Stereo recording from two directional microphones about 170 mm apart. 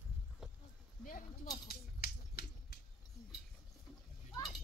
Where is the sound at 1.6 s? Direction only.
65° left (ahead or behind).